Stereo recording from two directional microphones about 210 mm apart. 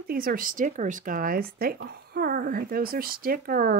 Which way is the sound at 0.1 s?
45° right (ahead or behind).